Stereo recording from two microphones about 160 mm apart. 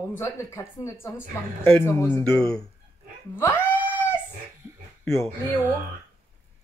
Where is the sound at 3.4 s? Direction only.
15° left (ahead or behind).